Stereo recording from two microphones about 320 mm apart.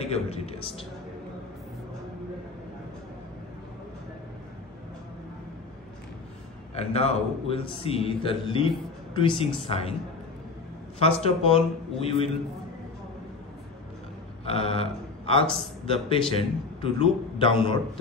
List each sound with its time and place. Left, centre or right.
0.0 s a man's voice: centre
6.7 s a man's voice: centre
11.0 s a man's voice: centre
14.4 s a man's voice: centre